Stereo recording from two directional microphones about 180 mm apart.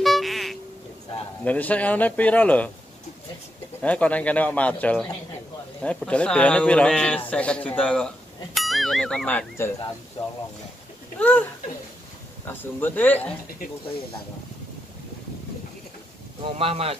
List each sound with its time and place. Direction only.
0.0 s music: centre (ahead or behind)
1.4 s a man's voice: 10° left (ahead or behind)
3.8 s a man's voice: 5° left (ahead or behind)
11.1 s speech: 5° left (ahead or behind)
12.4 s a man's voice: 10° left (ahead or behind)
16.5 s speech: 30° right (ahead or behind)